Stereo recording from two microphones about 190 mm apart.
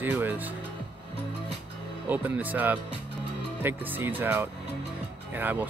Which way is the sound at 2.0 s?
10° right (ahead or behind).